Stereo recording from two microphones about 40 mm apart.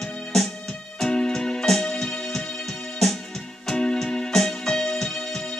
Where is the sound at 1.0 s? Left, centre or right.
Centre.